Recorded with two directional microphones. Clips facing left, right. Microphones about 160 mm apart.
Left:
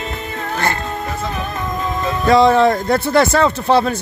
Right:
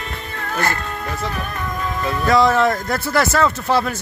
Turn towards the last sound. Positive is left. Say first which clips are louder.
# left 4 dB
turn(degrees=25)  # may be behind; listen again after turning